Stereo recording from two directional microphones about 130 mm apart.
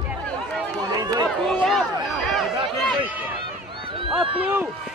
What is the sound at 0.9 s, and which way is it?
Run, 30° right (ahead or behind).